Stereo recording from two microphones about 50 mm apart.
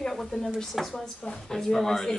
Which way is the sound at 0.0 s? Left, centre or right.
Centre.